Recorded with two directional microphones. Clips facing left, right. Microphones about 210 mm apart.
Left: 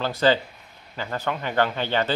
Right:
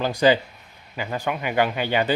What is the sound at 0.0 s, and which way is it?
Speech, 15° right (ahead or behind).